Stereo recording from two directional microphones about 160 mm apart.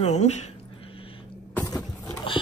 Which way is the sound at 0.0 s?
45° left (ahead or behind).